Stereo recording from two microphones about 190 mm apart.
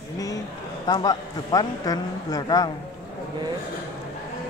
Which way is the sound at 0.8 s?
20° left (ahead or behind).